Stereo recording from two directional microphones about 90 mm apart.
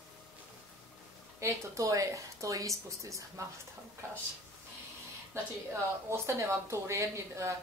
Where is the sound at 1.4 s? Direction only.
35° right (ahead or behind).